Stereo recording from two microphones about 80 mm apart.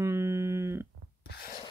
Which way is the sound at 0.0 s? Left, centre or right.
Right.